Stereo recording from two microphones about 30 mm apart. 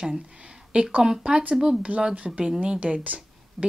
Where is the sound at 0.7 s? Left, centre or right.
Right.